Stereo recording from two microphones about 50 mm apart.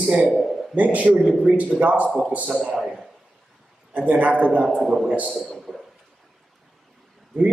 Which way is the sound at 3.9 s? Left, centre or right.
Right.